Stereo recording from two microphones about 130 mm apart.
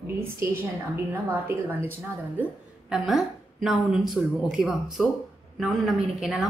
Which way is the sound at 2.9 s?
Centre (ahead or behind).